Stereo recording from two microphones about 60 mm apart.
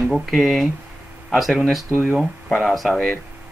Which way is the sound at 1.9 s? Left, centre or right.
Right.